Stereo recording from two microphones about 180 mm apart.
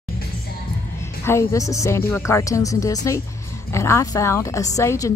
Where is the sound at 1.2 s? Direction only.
15° left (ahead or behind).